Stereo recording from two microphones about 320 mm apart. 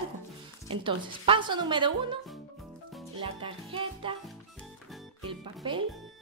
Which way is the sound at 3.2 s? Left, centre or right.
Centre.